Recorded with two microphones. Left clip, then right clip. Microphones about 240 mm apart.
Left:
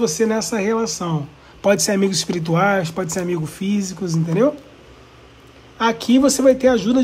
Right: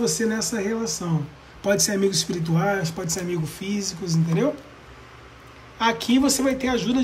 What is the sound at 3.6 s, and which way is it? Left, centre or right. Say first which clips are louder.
Speech: left 5 dB; centre.